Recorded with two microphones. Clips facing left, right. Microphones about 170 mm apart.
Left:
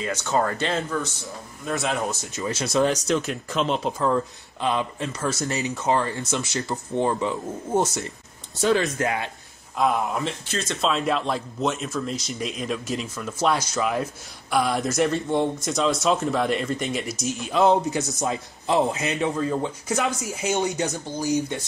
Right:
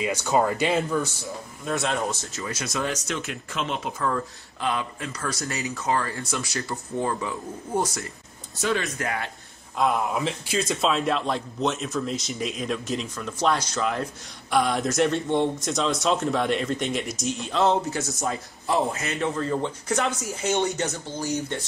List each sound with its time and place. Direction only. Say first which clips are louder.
0.0 s speech: right 1 dB; 15° right (ahead or behind)
1.0 s speech: right 2 dB; centre (ahead or behind)
2.3 s speech: left 7 dB; 25° left (ahead or behind)
4.1 s speech: left 5 dB; 20° left (ahead or behind)
9.8 s a man's voice: left 1 dB; centre (ahead or behind)